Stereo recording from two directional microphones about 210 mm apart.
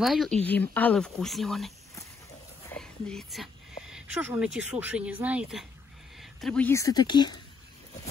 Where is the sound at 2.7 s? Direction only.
5° left (ahead or behind).